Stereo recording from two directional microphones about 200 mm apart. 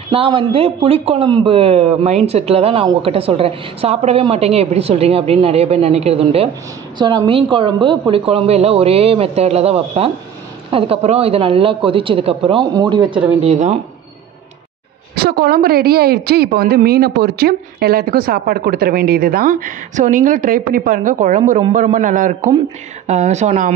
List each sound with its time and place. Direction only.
0.1 s a woman's voice: 25° right (ahead or behind)
15.1 s a woman's voice: 50° right (ahead or behind); by 23.7 s 35° right (ahead or behind)